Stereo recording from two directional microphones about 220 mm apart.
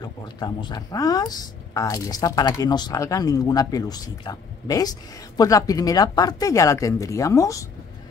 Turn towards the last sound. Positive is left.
turn(degrees=15)  # may be behind; listen again after turning